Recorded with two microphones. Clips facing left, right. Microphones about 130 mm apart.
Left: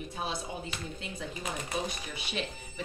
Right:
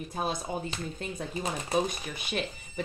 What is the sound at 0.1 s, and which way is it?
Speech, 45° right (ahead or behind).